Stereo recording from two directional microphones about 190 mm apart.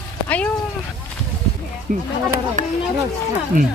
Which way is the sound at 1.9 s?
45° right (ahead or behind).